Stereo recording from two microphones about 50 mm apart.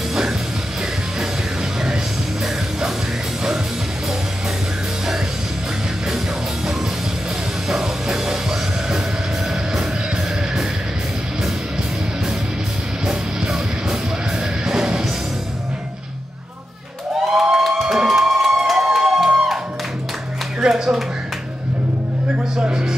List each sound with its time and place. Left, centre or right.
7.6 s music: centre
13.1 s music: centre
17.3 s a sound: centre
20.6 s music: centre
22.6 s music: centre